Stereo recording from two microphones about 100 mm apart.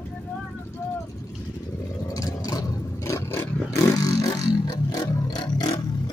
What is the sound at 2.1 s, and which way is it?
Vehicle, 35° left (ahead or behind).